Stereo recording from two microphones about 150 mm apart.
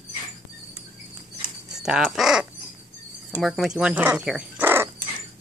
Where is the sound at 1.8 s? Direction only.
Centre (ahead or behind).